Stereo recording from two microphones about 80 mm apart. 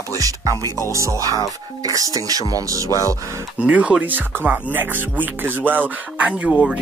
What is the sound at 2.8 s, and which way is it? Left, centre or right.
Speech, left.